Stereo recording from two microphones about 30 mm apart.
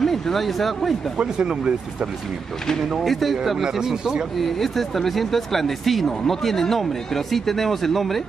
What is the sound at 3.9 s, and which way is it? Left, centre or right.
Speech, right.